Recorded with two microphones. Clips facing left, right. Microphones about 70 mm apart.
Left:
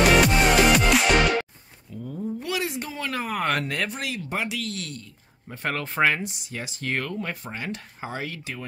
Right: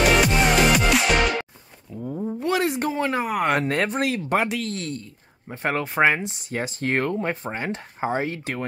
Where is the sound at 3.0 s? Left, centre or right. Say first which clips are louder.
Right 2 dB; right.